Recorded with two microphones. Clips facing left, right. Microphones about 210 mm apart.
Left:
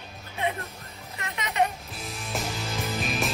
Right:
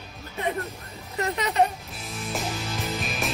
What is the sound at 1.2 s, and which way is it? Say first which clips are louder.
Speech: right 5 dB; 35° right (ahead or behind).